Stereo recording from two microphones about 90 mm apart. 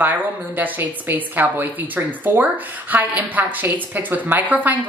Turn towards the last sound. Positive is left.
turn(degrees=-20)  # may be behind; listen again after turning